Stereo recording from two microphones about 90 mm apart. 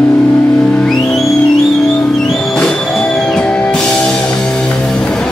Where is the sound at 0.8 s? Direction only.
5° left (ahead or behind).